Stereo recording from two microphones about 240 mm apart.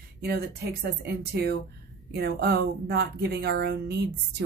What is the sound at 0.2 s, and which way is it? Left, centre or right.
A woman's voice, right.